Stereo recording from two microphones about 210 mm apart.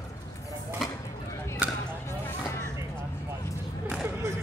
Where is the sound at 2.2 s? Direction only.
15° left (ahead or behind).